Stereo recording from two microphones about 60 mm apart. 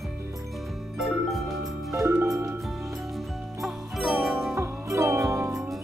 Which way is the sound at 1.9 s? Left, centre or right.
Right.